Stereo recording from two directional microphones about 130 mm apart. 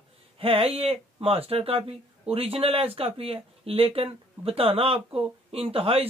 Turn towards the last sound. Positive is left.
turn(degrees=-45)  # may be behind; listen again after turning